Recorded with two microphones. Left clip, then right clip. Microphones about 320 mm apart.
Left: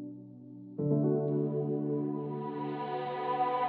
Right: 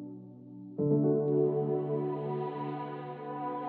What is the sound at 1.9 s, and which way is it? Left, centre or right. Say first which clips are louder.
Music: right 1 dB; right.